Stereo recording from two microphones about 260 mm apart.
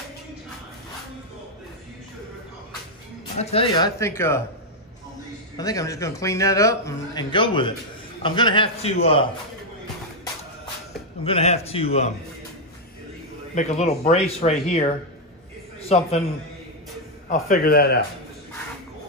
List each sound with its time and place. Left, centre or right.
3.3 s a man's voice: left
5.6 s a man's voice: centre
11.2 s speech: left
13.6 s speech: left
15.9 s speech: left
17.3 s a man's voice: left